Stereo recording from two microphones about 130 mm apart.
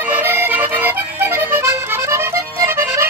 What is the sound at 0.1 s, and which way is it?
Accordion, 15° right (ahead or behind).